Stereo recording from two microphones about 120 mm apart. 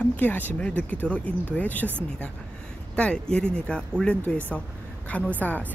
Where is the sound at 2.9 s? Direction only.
10° left (ahead or behind).